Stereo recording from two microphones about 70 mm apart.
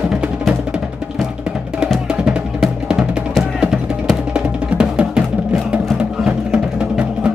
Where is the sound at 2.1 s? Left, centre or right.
Centre.